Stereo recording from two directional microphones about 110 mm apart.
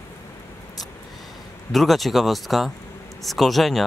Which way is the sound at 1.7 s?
Centre (ahead or behind).